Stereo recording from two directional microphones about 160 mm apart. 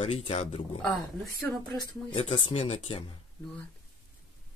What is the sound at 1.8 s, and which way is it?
Speech, 30° left (ahead or behind).